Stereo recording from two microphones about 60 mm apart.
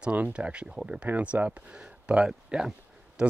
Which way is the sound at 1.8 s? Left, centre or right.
Centre.